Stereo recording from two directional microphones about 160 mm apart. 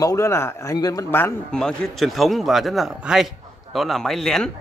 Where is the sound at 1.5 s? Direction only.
5° left (ahead or behind).